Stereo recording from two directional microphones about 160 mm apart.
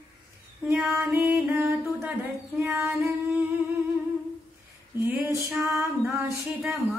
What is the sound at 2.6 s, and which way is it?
Music, 5° right (ahead or behind).